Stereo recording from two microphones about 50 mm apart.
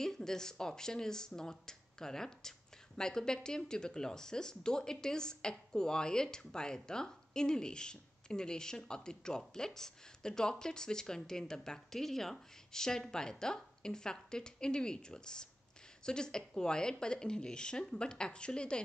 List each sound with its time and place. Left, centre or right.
0.0 s speech: centre